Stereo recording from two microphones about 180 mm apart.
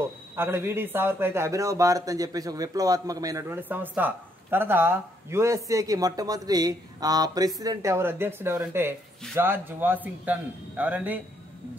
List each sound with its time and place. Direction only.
0.4 s a man's voice: 15° right (ahead or behind)